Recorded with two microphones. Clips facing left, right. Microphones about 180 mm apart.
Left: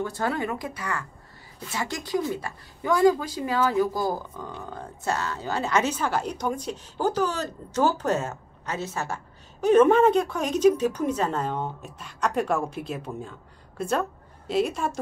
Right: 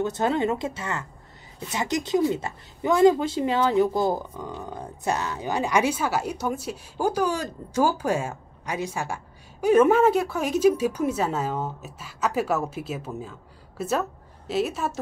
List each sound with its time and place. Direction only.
0.0 s a woman's voice: 20° right (ahead or behind); by 15.0 s 5° right (ahead or behind)